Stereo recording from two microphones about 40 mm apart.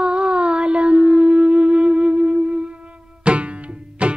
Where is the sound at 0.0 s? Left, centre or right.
Right.